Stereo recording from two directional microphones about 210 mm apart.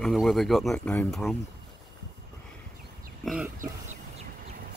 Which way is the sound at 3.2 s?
Centre (ahead or behind).